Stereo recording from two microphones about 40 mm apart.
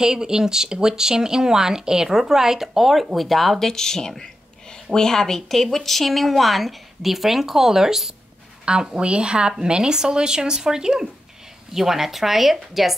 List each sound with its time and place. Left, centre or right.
0.0 s speech: centre
3.5 s a woman's voice: centre